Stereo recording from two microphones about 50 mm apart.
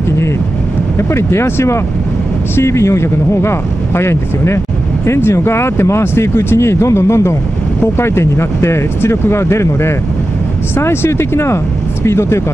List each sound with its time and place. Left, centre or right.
0.9 s speech: left